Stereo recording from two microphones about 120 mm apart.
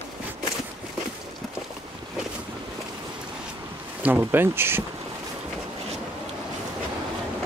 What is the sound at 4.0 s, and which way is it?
Speech, 15° right (ahead or behind).